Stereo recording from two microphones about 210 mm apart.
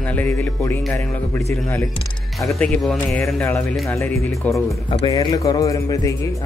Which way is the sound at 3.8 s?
15° left (ahead or behind).